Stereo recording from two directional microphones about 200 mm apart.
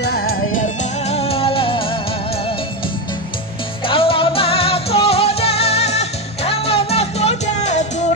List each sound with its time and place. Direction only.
0.1 s music: 50° left (ahead or behind); by 2.0 s 25° left (ahead or behind)
3.8 s music: 25° left (ahead or behind)